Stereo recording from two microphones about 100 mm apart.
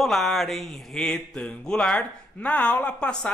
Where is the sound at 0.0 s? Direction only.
Centre (ahead or behind).